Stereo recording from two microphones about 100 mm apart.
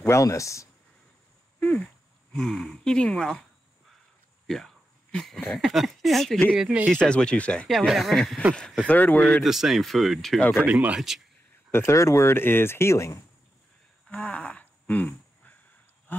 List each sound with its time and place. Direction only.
0.0 s speech: 30° left (ahead or behind)
2.3 s speech: 5° left (ahead or behind)
4.5 s a sound: 5° left (ahead or behind)
5.5 s speech: centre (ahead or behind)
6.5 s speech: 10° right (ahead or behind)
6.9 s speech: 10° left (ahead or behind)
7.6 s speech: centre (ahead or behind)
8.8 s speech: 15° left (ahead or behind)
9.4 s speech: 5° right (ahead or behind)
10.6 s speech: 15° right (ahead or behind)
11.0 s speech: 5° right (ahead or behind)
11.7 s speech: 25° left (ahead or behind)
14.0 s a sound: 15° left (ahead or behind)